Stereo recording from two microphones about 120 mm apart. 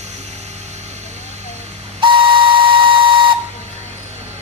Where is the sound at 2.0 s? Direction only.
45° right (ahead or behind).